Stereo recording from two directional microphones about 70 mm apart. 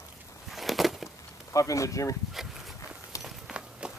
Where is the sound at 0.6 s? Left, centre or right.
Centre.